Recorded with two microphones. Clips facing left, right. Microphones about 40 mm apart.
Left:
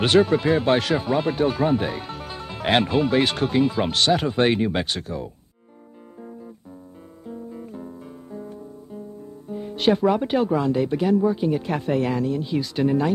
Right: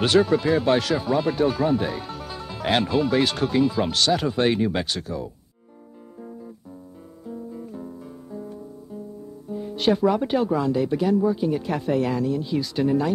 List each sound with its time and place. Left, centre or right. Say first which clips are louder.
0.0 s speech: left 1 dB; left
7.2 s guitar: even; left
9.5 s speech: left 1 dB; left